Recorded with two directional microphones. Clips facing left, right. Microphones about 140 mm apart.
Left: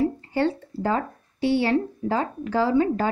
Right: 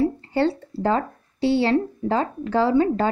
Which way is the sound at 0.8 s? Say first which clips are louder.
Right 3 dB; 25° right (ahead or behind).